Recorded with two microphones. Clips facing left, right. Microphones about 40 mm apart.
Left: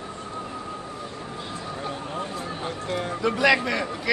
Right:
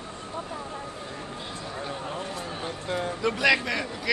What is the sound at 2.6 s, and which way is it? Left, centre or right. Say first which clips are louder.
Speech: even; left.